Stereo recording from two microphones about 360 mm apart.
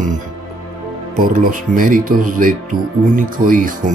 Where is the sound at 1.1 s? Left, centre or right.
Right.